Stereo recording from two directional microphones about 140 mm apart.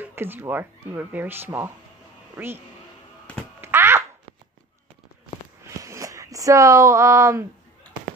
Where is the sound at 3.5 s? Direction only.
15° right (ahead or behind).